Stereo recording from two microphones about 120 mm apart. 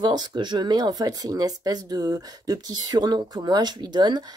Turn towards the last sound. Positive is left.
turn(degrees=-35)  # may be behind; listen again after turning